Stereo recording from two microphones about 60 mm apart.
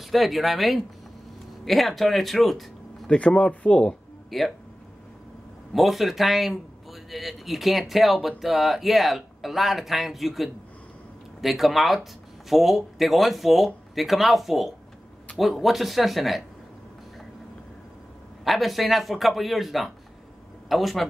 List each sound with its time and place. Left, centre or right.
0.0 s a man's voice: centre
3.1 s speech: centre
4.3 s a man's voice: centre
5.7 s a man's voice: centre
18.4 s a man's voice: centre